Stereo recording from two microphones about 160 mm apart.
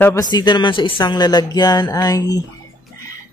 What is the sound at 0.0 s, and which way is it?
Speech, 20° left (ahead or behind).